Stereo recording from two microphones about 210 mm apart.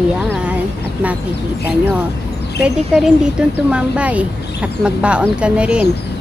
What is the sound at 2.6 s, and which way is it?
Speech, 5° right (ahead or behind).